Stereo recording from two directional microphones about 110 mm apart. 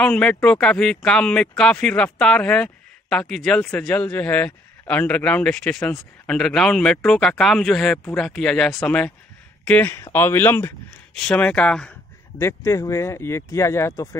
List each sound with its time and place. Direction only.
0.0 s speech: 10° left (ahead or behind)
11.1 s speech: 10° left (ahead or behind)
12.4 s speech: 25° left (ahead or behind)